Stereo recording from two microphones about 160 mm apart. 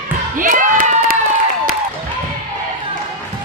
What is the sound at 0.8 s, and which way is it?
Run, 50° right (ahead or behind).